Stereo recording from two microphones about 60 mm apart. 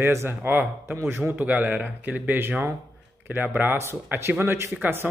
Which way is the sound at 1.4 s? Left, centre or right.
Right.